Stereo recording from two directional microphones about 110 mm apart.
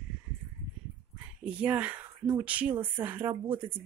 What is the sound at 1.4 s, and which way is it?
Speech, 10° right (ahead or behind).